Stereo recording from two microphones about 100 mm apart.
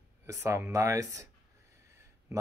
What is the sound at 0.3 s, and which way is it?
Speech, 25° right (ahead or behind).